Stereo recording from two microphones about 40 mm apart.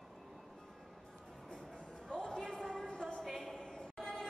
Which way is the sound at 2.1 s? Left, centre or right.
Centre.